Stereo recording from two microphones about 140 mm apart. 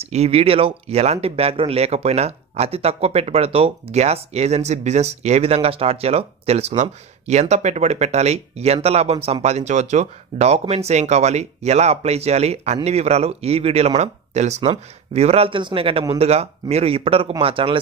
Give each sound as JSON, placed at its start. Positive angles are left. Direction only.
{"t": 0.0, "sound": "a man's voice", "side_deg": -50}